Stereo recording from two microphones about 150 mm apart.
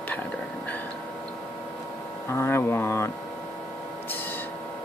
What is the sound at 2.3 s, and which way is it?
Mantra, 15° left (ahead or behind).